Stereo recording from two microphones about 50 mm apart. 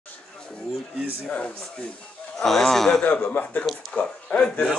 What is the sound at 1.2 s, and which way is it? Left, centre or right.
Speech, left.